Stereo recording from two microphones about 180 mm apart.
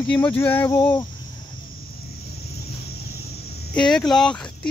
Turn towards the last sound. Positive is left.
turn(degrees=5)  # may be behind; listen again after turning